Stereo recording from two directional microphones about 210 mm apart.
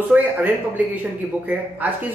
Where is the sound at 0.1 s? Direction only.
5° right (ahead or behind).